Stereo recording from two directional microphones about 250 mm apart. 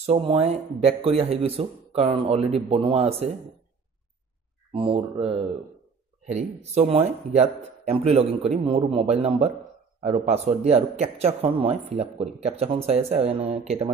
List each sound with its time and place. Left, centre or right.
0.0 s speech: right
4.7 s speech: right